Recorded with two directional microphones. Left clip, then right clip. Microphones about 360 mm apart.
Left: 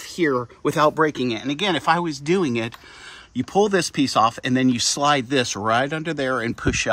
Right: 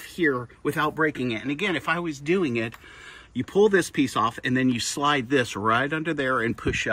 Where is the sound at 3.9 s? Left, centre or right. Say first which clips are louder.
Left 5 dB; centre.